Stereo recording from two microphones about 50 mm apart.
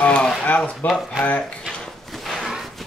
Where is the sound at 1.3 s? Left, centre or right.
Left.